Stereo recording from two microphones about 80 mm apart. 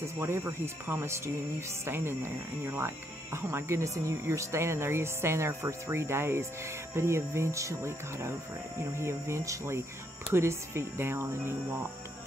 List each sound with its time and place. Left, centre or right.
0.0 s speech: right